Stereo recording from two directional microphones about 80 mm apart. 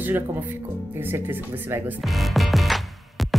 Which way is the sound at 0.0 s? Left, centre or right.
Right.